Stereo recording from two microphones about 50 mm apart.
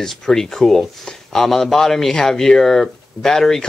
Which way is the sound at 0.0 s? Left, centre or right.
Centre.